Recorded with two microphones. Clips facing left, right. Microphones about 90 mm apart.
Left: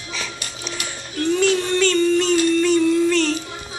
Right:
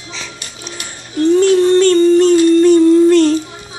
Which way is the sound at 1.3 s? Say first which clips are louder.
Right 9 dB; 35° right (ahead or behind).